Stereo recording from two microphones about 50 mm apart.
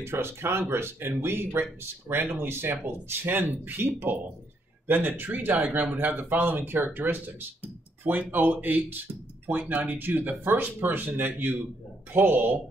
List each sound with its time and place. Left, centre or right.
0.0 s speech: right
3.1 s speech: right